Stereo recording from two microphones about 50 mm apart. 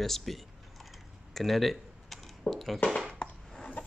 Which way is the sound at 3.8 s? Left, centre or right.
Left.